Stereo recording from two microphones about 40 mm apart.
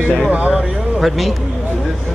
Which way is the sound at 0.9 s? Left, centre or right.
Centre.